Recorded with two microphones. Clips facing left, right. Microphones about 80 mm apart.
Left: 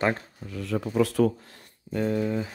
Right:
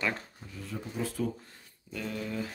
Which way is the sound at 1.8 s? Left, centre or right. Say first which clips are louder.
Left 11 dB; left.